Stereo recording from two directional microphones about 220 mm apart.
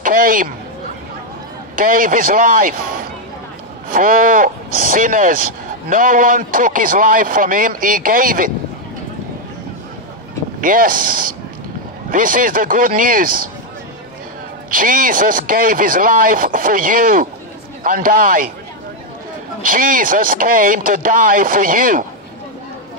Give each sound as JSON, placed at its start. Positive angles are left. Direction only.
{"t": 0.0, "sound": "speech", "side_deg": -40}
{"t": 1.8, "sound": "speech", "side_deg": -40}
{"t": 10.6, "sound": "speech", "side_deg": -40}
{"t": 14.7, "sound": "speech", "side_deg": -40}
{"t": 19.6, "sound": "speech", "side_deg": -40}